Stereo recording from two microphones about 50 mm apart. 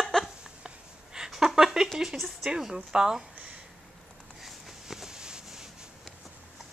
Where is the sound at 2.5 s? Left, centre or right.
Centre.